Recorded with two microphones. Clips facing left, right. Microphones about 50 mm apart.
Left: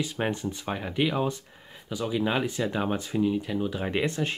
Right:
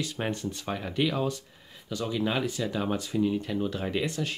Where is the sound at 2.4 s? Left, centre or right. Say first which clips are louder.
Left 2 dB; left.